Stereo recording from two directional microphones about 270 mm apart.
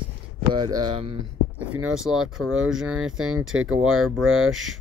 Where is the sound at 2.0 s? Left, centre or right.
Centre.